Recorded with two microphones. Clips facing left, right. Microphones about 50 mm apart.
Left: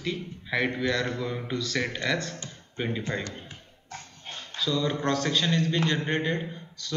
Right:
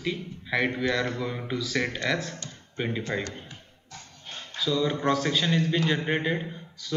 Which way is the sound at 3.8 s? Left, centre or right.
Left.